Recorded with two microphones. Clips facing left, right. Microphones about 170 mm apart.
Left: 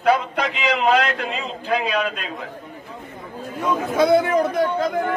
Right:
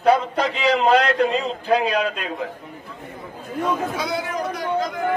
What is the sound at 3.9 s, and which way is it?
Speech, 55° left (ahead or behind).